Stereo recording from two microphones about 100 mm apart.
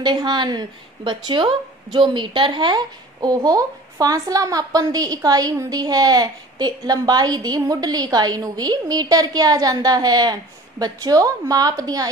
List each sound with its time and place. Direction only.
0.0 s speech: 45° right (ahead or behind)